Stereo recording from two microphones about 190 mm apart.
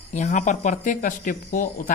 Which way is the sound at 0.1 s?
40° left (ahead or behind).